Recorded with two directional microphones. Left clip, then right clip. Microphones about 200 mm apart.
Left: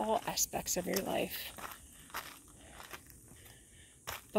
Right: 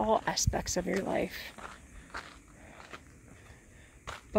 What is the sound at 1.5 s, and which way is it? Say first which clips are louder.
Walk: right 1 dB; 55° left (ahead or behind).